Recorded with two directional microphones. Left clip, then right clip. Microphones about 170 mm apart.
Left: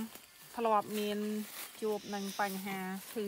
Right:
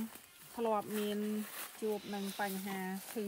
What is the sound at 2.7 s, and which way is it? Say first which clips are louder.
Speech: left 1 dB; 10° left (ahead or behind).